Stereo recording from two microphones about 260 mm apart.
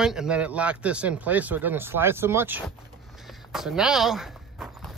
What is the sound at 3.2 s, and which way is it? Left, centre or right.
Walk, centre.